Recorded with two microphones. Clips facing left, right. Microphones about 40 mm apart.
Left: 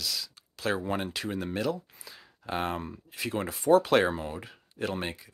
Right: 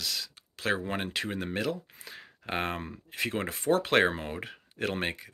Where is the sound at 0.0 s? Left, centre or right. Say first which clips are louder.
Even; right.